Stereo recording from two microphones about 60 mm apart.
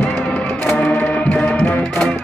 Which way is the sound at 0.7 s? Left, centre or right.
Left.